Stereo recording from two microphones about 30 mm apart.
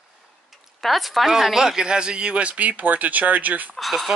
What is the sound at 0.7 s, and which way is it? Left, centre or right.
Speech, centre.